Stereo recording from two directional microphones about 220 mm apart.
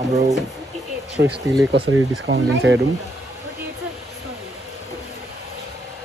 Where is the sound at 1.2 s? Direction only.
50° right (ahead or behind).